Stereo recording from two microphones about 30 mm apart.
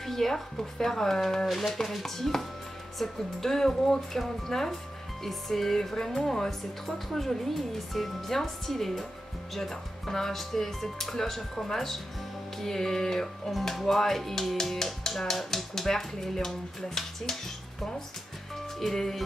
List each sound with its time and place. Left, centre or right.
0.0 s speech: centre
18.8 s speech: centre